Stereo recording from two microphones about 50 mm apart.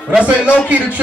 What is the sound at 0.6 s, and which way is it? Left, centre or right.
Speech, right.